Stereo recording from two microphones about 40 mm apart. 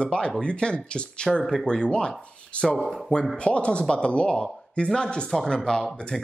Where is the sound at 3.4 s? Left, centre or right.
Left.